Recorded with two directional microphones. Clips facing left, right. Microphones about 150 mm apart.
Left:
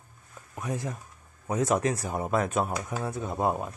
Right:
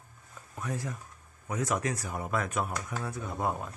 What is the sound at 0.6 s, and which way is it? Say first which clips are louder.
Speech: left 3 dB; 20° left (ahead or behind).